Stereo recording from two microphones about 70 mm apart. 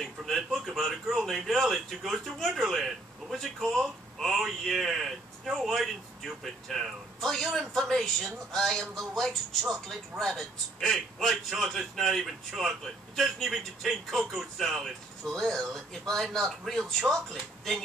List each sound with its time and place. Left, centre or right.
0.0 s speech: centre